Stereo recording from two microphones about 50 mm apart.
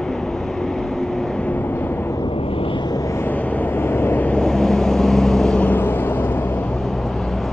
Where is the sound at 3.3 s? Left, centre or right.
Left.